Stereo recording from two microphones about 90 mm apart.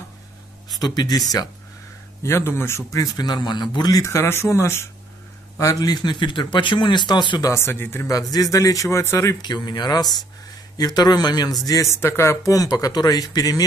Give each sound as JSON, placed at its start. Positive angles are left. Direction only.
{"t": 0.8, "sound": "a man's voice", "side_deg": 50}
{"t": 2.2, "sound": "speech", "side_deg": 30}
{"t": 3.0, "sound": "a man's voice", "side_deg": 50}
{"t": 4.0, "sound": "speech", "side_deg": 30}
{"t": 5.6, "sound": "a man's voice", "side_deg": 40}
{"t": 7.4, "sound": "speech", "side_deg": 25}
{"t": 8.1, "sound": "speech", "side_deg": 45}
{"t": 9.4, "sound": "a man's voice", "side_deg": 50}